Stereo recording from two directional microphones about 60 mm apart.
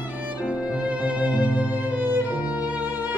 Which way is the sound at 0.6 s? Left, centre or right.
Centre.